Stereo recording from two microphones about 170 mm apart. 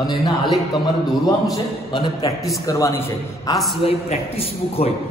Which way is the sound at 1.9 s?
30° left (ahead or behind).